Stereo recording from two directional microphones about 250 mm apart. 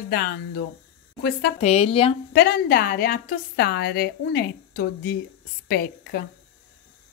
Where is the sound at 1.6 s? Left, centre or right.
Left.